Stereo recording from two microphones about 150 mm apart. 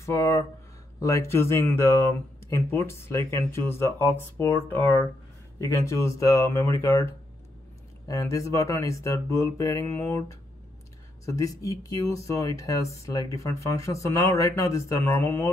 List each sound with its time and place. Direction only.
0.0 s speech: 20° left (ahead or behind)
8.1 s speech: 20° left (ahead or behind)